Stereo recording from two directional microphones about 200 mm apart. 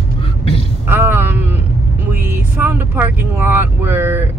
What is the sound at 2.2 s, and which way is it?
Speech, 10° right (ahead or behind).